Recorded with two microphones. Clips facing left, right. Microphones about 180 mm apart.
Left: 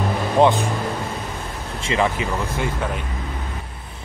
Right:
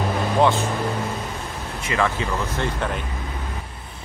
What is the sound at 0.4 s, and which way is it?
Speech, 15° left (ahead or behind).